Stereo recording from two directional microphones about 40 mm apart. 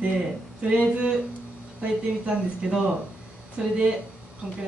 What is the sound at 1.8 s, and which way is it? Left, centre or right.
Speech, right.